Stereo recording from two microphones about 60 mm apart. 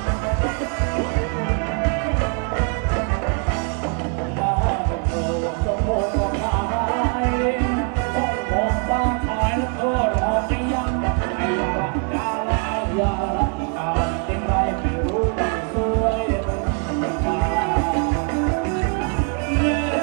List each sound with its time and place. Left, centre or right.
6.7 s music: centre
12.9 s music: centre
15.3 s music: centre
19.5 s music: centre